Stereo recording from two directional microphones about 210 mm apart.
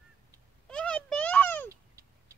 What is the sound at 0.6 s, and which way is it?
A child's voice, 5° left (ahead or behind).